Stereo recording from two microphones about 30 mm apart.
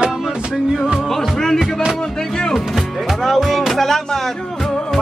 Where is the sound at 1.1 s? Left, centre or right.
Centre.